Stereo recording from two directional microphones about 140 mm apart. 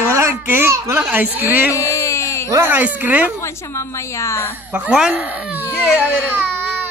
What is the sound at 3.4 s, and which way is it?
A woman's voice, 20° left (ahead or behind).